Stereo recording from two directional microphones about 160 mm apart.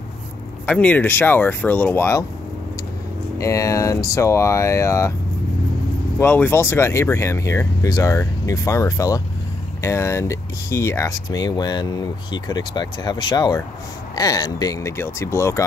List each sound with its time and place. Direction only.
0.7 s speech: 10° left (ahead or behind)
3.3 s speech: 20° left (ahead or behind)
6.1 s speech: 10° left (ahead or behind)